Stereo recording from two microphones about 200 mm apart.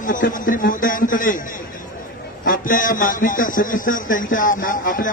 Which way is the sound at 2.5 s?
40° left (ahead or behind).